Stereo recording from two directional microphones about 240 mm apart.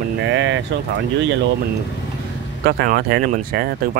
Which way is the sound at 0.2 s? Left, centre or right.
Right.